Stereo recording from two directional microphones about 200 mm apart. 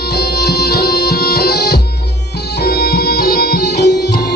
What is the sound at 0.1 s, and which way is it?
Music, 50° left (ahead or behind).